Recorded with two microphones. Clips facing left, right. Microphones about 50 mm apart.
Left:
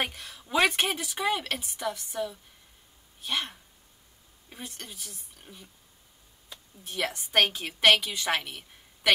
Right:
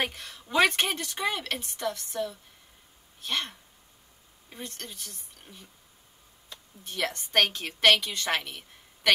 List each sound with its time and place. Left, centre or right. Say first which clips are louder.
0.0 s a woman's voice: right 1 dB; centre